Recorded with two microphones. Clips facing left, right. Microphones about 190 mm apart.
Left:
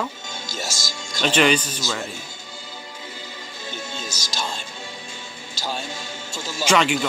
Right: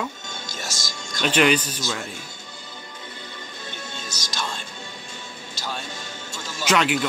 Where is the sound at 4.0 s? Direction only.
30° left (ahead or behind).